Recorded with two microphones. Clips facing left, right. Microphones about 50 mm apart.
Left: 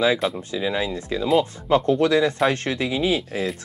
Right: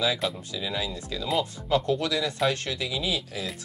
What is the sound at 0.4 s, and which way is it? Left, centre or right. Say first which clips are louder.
Speech: left 7 dB; left.